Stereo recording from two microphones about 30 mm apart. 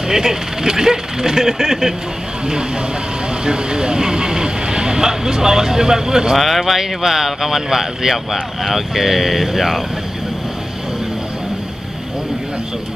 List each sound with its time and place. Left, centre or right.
0.1 s speech: centre
3.4 s speech: right
6.3 s speech: centre
6.8 s speech: centre